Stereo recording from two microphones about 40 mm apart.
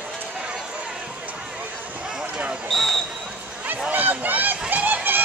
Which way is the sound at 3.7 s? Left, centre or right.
Right.